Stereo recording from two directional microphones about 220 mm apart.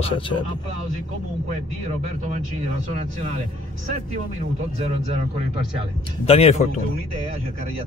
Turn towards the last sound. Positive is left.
turn(degrees=25)  # may be behind; listen again after turning